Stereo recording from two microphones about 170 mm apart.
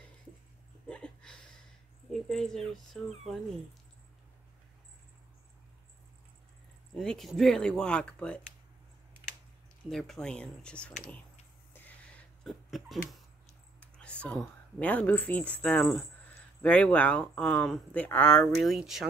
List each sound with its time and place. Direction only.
0.8 s a sound: 5° left (ahead or behind)
2.2 s speech: 5° left (ahead or behind)
7.0 s speech: centre (ahead or behind)
9.8 s speech: centre (ahead or behind)
11.7 s a sound: 10° left (ahead or behind)
13.7 s speech: 5° left (ahead or behind)